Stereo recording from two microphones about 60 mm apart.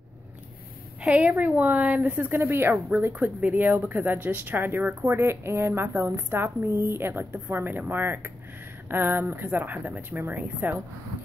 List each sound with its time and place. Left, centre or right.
1.0 s a woman's voice: right
2.3 s speech: right